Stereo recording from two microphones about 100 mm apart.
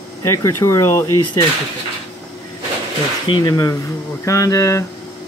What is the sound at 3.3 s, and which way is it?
Speech, 45° left (ahead or behind).